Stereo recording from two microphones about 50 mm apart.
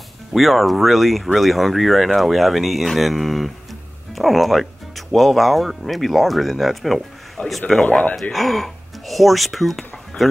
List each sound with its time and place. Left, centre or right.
0.3 s speech: centre
7.4 s speech: left
8.2 s speech: centre